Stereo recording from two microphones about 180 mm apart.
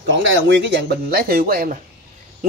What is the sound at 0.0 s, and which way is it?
Speech, 85° right.